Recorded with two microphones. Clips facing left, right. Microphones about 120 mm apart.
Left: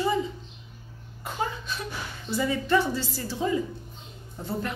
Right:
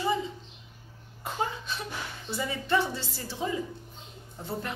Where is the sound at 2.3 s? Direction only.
20° right (ahead or behind).